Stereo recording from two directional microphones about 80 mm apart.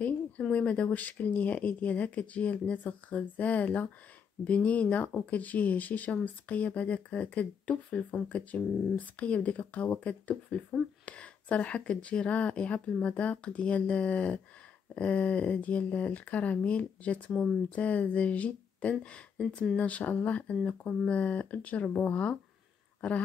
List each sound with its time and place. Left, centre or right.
0.4 s speech: centre
17.7 s speech: centre
22.9 s a sound: centre